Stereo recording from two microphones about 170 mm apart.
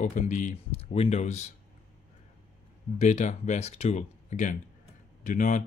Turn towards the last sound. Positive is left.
turn(degrees=50)  # may be behind; listen again after turning